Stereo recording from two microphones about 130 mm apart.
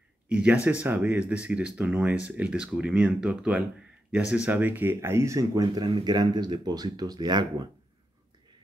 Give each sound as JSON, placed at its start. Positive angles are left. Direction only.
{"t": 0.3, "sound": "speech", "side_deg": -10}